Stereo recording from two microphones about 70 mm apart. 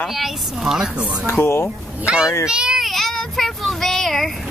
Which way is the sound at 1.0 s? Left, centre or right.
Centre.